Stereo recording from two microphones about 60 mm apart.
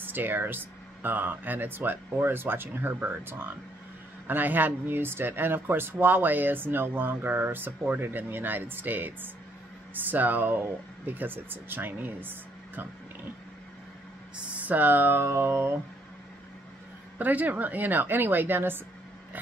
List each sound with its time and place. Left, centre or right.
0.0 s speech: right
14.3 s speech: right
17.2 s speech: right